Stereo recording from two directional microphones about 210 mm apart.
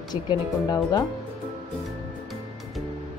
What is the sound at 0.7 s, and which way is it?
Speech, 15° left (ahead or behind).